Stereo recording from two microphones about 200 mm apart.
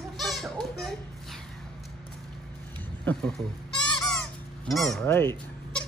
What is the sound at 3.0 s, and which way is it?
Speech, 5° left (ahead or behind).